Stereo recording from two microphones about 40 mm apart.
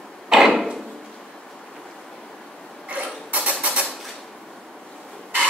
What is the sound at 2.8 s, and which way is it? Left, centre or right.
Mechanisms, right.